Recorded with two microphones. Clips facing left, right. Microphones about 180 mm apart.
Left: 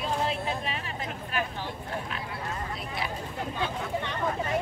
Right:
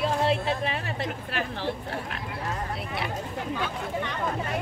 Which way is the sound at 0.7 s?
70° right (ahead or behind).